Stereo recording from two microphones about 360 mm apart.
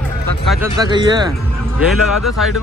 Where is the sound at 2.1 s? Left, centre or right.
Left.